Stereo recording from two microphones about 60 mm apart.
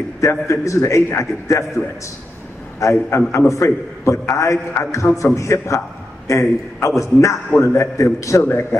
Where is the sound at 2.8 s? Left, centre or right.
Left.